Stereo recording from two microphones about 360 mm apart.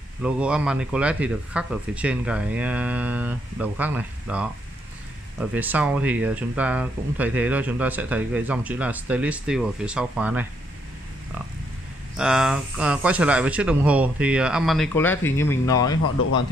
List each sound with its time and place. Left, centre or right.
0.2 s speech: centre
12.2 s speech: centre